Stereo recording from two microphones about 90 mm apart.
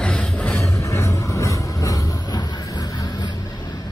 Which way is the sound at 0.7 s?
30° left (ahead or behind).